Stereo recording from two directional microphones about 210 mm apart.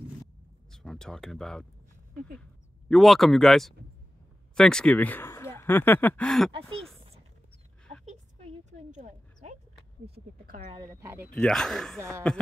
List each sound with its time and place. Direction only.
0.7 s speech: centre (ahead or behind)
2.9 s speech: centre (ahead or behind)
8.0 s dog: 35° right (ahead or behind)
10.0 s speech: 45° right (ahead or behind)
10.7 s speech: 15° right (ahead or behind)
11.3 s speech: 5° left (ahead or behind)